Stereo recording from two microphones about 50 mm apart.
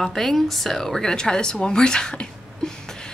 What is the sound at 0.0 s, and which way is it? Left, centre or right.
A woman's voice, centre.